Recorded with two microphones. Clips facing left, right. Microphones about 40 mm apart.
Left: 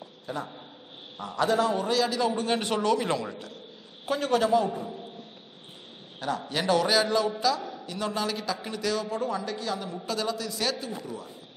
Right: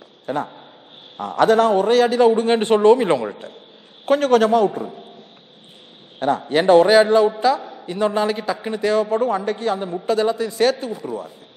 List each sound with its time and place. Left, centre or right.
0.3 s a man's voice: right
4.0 s a man's voice: right
6.1 s a man's voice: right